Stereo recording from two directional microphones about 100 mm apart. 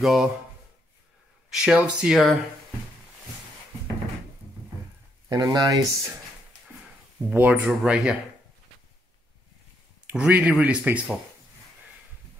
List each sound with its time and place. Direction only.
0.0 s speech: centre (ahead or behind)
1.5 s speech: 5° right (ahead or behind)
5.3 s speech: 35° right (ahead or behind)
7.2 s speech: 15° right (ahead or behind)
7.8 s speech: 5° right (ahead or behind)
10.0 s speech: 15° right (ahead or behind)